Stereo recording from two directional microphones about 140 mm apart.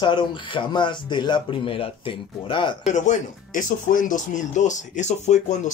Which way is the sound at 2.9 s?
60° left (ahead or behind).